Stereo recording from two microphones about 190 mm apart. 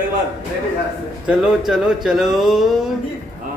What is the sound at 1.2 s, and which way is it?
Speech, 5° right (ahead or behind).